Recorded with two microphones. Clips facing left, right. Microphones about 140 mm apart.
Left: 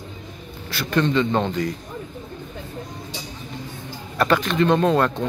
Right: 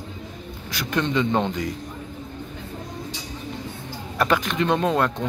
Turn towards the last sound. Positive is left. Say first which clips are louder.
# left 3 dB
turn(degrees=-10)  # may be behind; listen again after turning